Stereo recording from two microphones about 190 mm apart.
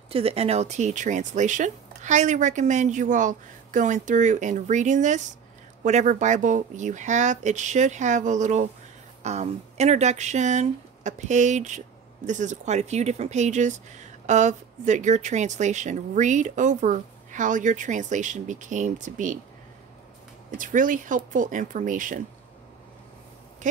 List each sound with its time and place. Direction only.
0.1 s speech: 30° right (ahead or behind)
20.5 s speech: 45° right (ahead or behind)